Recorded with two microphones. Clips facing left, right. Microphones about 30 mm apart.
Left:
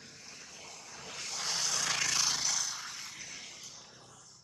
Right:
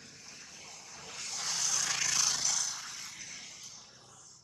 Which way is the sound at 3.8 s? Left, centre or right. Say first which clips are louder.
Left 1 dB; centre.